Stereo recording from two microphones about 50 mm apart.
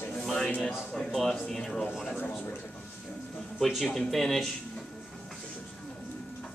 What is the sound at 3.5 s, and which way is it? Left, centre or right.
Speech, centre.